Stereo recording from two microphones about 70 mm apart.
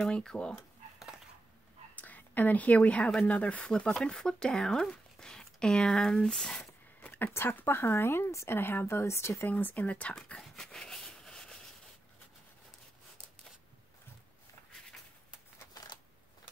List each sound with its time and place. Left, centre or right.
0.0 s speech: centre
0.9 s a sound: centre
2.0 s a woman's voice: left
7.3 s speech: left
9.5 s speech: left
10.2 s a sound: centre